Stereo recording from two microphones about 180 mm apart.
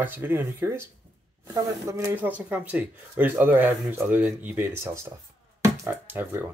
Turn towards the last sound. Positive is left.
turn(degrees=-10)  # may be behind; listen again after turning